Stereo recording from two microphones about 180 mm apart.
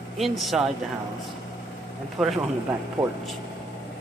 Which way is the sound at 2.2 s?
5° right (ahead or behind).